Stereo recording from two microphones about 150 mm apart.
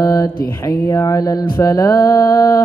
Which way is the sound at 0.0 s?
25° left (ahead or behind).